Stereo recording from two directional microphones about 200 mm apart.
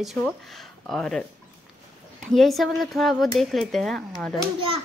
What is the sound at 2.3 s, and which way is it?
A woman's voice, centre (ahead or behind).